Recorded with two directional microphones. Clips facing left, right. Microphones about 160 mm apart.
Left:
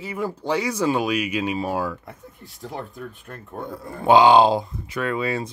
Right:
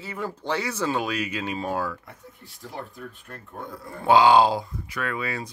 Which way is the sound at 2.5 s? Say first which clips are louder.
Left 4 dB; 45° left (ahead or behind).